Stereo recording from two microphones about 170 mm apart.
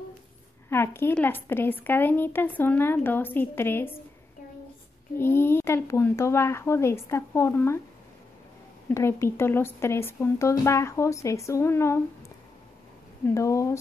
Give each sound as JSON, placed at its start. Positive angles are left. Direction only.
{"t": 0.7, "sound": "a woman's voice", "side_deg": 15}
{"t": 5.1, "sound": "a woman's voice", "side_deg": 15}
{"t": 8.8, "sound": "a woman's voice", "side_deg": 15}
{"t": 13.2, "sound": "a woman's voice", "side_deg": 20}